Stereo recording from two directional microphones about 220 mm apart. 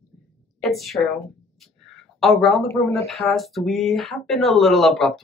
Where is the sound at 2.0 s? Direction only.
Centre (ahead or behind).